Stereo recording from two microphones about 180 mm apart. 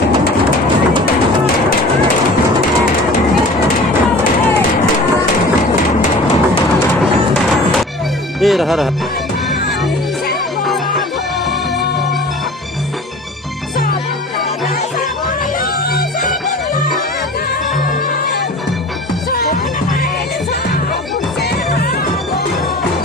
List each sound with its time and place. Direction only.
8.4 s speech: centre (ahead or behind)
19.3 s music: 50° left (ahead or behind)